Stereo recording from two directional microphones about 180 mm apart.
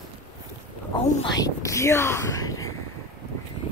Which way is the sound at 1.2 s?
20° left (ahead or behind).